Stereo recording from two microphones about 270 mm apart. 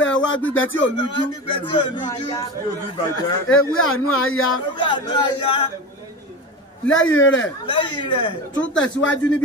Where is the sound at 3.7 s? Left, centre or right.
Left.